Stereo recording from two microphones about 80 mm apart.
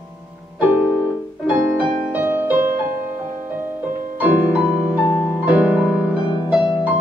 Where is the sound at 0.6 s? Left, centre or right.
Right.